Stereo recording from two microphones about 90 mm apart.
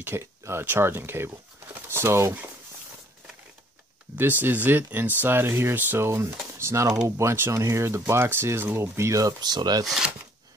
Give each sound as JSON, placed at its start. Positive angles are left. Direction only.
{"t": 0.0, "sound": "speech", "side_deg": -30}
{"t": 4.2, "sound": "speech", "side_deg": -20}
{"t": 9.8, "sound": "speech", "side_deg": -5}